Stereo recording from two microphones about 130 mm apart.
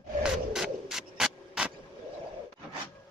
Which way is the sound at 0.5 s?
5° right (ahead or behind).